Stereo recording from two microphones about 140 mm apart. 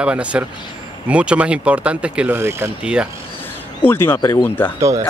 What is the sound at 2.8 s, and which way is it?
Speech, 5° right (ahead or behind).